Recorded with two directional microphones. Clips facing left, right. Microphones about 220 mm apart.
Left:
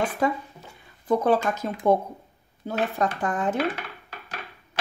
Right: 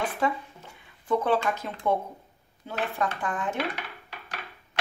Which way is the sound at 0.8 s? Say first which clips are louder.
Left 4 dB; 40° left (ahead or behind).